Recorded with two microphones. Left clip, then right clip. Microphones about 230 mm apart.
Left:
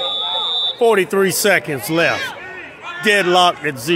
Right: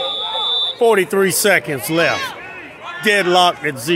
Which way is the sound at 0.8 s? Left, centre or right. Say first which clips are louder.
Even; centre.